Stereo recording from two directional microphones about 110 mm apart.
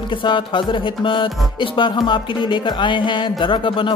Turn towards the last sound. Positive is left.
turn(degrees=50)  # may be behind; listen again after turning